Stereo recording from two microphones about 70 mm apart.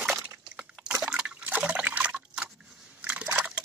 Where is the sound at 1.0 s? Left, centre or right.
Centre.